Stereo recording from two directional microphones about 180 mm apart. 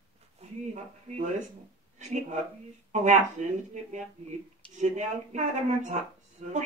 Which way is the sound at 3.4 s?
45° right (ahead or behind).